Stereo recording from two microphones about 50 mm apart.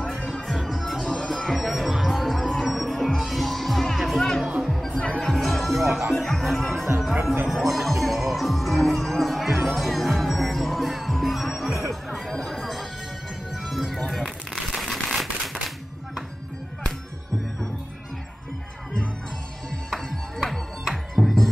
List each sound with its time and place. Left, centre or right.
0.3 s music: centre
4.5 s music: centre
4.7 s music: centre
7.4 s speech: centre
9.7 s music: centre
14.8 s a sound: centre
19.9 s music: centre